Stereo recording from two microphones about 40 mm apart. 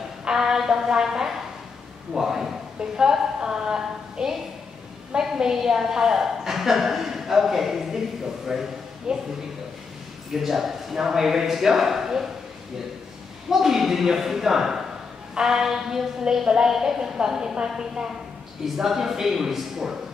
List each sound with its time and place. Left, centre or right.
0.3 s a woman's voice: centre
10.3 s a woman's voice: centre
13.5 s a woman's voice: centre